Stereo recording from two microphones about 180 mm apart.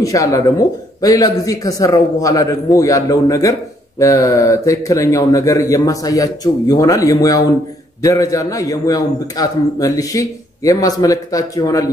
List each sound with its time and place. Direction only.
0.0 s a man's voice: 20° left (ahead or behind)